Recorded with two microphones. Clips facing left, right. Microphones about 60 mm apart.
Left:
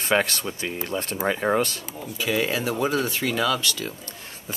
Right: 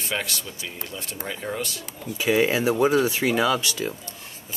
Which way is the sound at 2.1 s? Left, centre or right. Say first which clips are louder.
Right 4 dB; right.